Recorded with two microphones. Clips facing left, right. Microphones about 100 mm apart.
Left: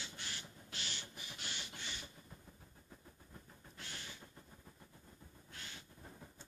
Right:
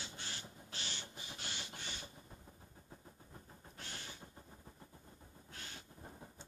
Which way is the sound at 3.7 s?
40° right (ahead or behind).